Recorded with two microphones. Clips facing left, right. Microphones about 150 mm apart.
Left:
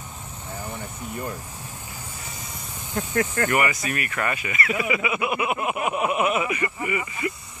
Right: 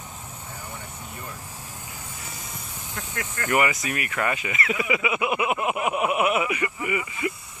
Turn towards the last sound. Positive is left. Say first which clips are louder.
# even
turn(degrees=-15)  # may be behind; listen again after turning